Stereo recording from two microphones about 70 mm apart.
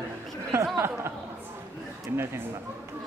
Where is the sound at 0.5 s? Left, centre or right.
Right.